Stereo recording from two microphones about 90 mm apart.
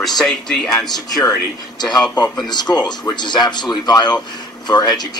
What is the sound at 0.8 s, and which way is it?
Speech, 50° left (ahead or behind).